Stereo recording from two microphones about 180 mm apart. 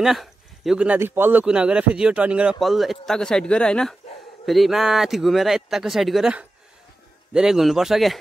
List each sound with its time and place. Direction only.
0.0 s a man's voice: centre (ahead or behind)